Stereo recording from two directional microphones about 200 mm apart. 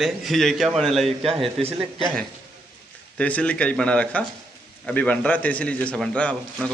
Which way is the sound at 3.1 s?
5° left (ahead or behind).